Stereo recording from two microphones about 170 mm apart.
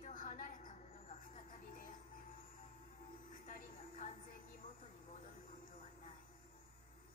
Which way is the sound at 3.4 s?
45° left (ahead or behind).